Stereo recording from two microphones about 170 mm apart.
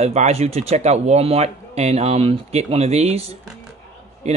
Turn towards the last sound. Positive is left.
turn(degrees=-40)  # may be behind; listen again after turning